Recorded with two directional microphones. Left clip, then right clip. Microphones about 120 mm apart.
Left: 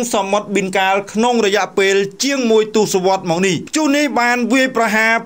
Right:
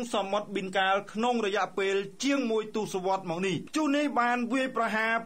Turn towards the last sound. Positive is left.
turn(degrees=40)  # may be behind; listen again after turning